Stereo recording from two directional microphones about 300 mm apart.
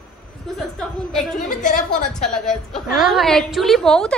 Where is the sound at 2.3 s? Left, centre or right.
Centre.